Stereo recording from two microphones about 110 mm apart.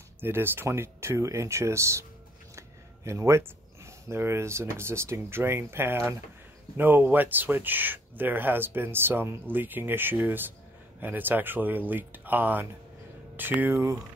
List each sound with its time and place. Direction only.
0.2 s speech: 20° right (ahead or behind)